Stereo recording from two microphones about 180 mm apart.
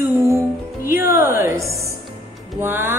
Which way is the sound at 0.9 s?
15° right (ahead or behind).